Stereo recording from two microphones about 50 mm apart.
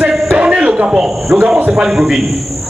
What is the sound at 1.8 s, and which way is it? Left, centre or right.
Speech, centre.